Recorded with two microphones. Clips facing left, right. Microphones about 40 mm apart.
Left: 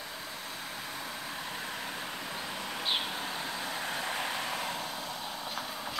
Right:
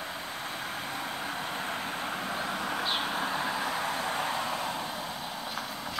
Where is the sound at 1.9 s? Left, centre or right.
Right.